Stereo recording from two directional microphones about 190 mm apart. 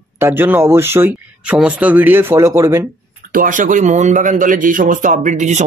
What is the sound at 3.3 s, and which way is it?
A man's voice, 45° right (ahead or behind).